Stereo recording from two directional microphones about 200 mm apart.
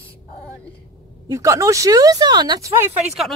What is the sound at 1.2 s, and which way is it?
Speech, 15° right (ahead or behind).